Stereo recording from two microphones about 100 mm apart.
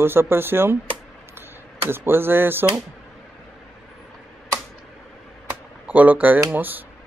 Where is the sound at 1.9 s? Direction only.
20° right (ahead or behind).